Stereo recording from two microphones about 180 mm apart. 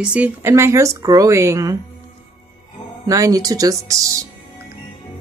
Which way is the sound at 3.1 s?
20° right (ahead or behind).